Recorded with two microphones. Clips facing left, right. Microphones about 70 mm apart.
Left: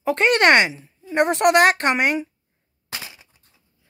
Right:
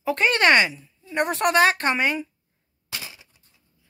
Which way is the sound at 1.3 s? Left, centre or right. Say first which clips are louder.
Left 3 dB; left.